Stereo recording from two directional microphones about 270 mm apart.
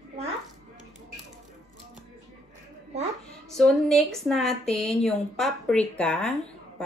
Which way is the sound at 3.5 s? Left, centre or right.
Centre.